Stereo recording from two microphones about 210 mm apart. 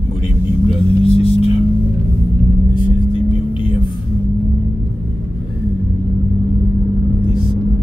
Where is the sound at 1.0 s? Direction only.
25° left (ahead or behind).